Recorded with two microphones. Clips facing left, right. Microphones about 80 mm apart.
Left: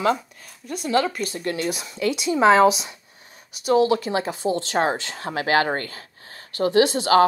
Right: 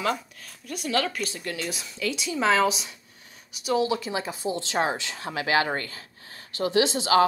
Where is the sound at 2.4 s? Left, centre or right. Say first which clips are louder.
Left 7 dB; left.